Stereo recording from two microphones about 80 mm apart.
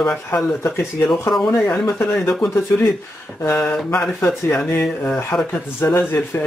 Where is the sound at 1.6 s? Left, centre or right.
Left.